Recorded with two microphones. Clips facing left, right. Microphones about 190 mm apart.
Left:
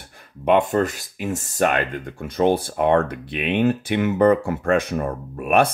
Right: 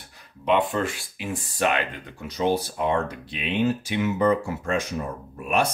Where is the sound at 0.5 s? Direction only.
45° left (ahead or behind).